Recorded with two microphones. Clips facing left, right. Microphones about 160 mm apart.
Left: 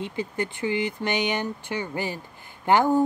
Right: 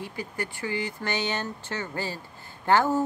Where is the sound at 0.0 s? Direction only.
20° left (ahead or behind).